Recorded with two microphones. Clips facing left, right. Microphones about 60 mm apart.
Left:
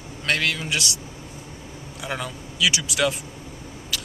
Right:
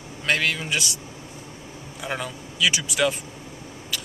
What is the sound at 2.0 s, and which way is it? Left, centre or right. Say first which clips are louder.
Speech: even; centre.